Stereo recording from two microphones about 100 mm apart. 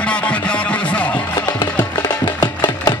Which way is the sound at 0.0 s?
10° left (ahead or behind).